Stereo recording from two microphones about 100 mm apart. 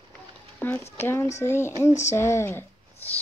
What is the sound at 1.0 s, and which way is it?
Speech, 25° left (ahead or behind).